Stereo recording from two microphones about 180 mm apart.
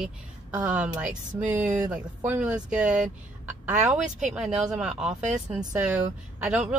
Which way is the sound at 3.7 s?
45° right (ahead or behind).